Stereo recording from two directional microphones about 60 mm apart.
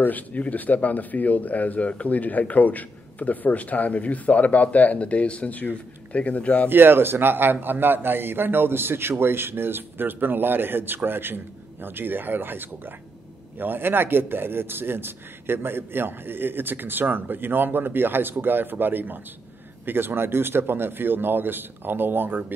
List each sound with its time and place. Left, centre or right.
0.0 s speech: left
6.7 s a man's voice: right